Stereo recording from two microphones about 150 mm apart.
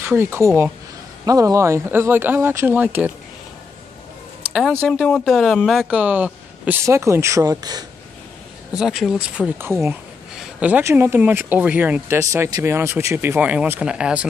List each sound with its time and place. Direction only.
0.0 s speech: 15° right (ahead or behind)
4.5 s speech: 5° right (ahead or behind); by 7.8 s 25° right (ahead or behind)
8.7 s speech: 5° right (ahead or behind)
9.6 s speech: 15° right (ahead or behind)